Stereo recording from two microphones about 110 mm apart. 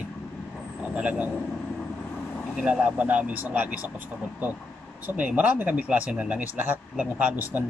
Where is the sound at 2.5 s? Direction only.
10° right (ahead or behind).